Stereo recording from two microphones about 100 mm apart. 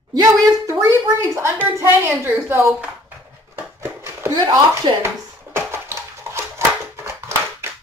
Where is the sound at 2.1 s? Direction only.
20° right (ahead or behind).